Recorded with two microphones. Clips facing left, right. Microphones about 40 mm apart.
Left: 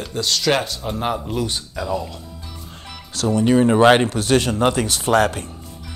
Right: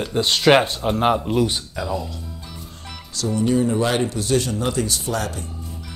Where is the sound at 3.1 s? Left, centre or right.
Left.